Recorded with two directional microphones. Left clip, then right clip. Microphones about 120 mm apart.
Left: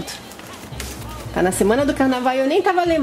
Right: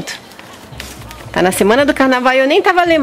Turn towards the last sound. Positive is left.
turn(degrees=-35)  # may be behind; listen again after turning